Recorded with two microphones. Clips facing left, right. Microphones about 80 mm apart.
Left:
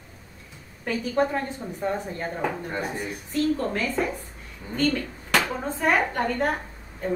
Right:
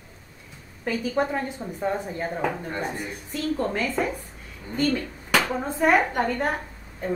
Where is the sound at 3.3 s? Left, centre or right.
Centre.